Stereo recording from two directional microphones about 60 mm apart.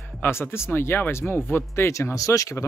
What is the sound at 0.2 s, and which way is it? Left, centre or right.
Speech, left.